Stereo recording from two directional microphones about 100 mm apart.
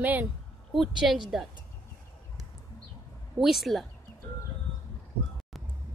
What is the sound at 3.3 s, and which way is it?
Speech, centre (ahead or behind).